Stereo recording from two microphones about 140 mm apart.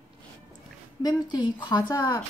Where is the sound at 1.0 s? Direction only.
30° left (ahead or behind).